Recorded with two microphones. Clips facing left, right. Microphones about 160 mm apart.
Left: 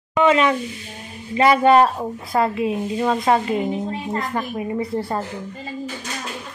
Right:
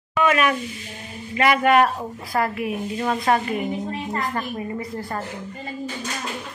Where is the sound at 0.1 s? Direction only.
25° left (ahead or behind).